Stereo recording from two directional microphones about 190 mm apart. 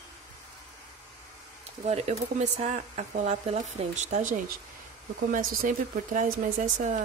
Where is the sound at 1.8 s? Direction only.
35° right (ahead or behind).